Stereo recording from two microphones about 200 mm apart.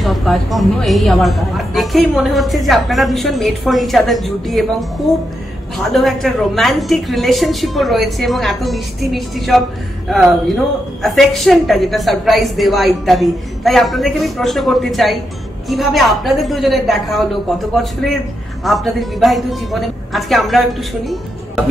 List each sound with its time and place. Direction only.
0.0 s a woman's voice: centre (ahead or behind)
18.6 s a woman's voice: centre (ahead or behind)